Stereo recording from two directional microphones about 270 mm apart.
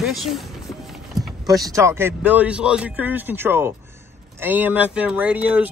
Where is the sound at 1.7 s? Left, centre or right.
Centre.